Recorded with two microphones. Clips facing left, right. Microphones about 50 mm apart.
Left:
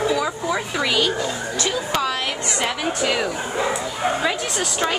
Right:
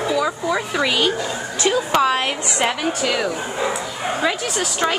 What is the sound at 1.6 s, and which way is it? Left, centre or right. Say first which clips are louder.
Speech: right 7 dB; right.